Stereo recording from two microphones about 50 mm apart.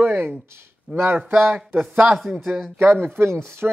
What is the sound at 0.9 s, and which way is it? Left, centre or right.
Speech, centre.